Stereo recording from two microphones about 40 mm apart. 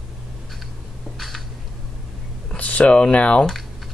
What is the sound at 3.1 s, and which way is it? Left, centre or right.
Speech, left.